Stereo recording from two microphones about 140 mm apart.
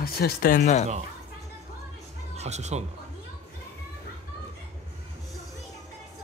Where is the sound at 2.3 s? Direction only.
55° right (ahead or behind).